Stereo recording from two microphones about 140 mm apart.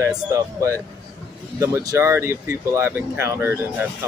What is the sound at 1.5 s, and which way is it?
Speech, 20° right (ahead or behind).